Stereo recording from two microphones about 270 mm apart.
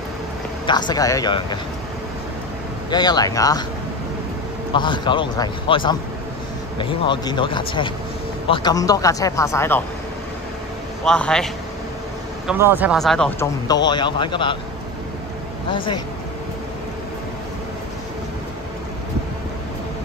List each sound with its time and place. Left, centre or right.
0.7 s speech: centre
2.9 s speech: centre
4.7 s speech: centre
11.1 s speech: centre
13.8 s speech: centre
15.7 s speech: centre